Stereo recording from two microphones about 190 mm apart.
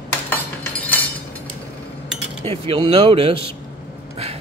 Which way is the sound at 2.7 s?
30° right (ahead or behind).